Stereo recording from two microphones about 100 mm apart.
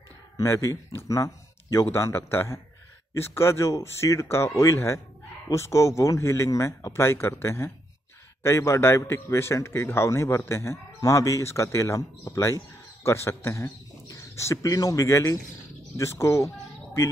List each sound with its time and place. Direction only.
0.4 s a man's voice: 30° left (ahead or behind)